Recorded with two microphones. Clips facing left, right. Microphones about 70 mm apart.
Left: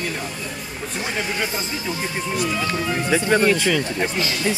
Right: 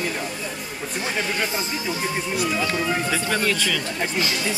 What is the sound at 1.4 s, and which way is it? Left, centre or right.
Speech, centre.